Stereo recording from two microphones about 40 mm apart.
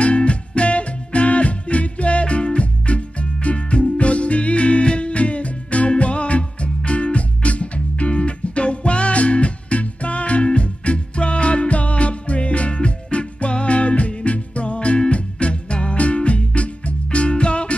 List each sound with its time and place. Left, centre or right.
0.0 s music: left